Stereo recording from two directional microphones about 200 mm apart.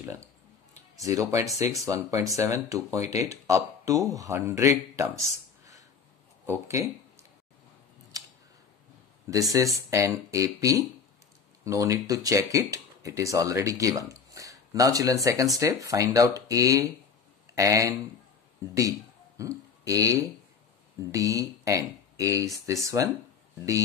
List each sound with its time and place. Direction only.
0.9 s speech: 15° right (ahead or behind)
6.4 s speech: 10° right (ahead or behind)
9.3 s speech: 15° right (ahead or behind)
18.8 s a sound: 15° right (ahead or behind)
19.8 s speech: 15° right (ahead or behind)